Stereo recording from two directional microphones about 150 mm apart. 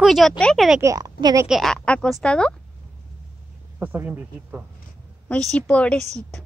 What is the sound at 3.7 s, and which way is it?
Speech, 15° right (ahead or behind).